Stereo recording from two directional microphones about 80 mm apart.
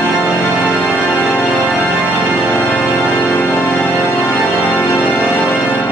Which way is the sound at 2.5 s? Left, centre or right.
Left.